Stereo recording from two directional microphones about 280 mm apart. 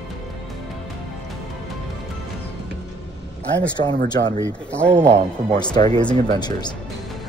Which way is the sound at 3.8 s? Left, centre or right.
Centre.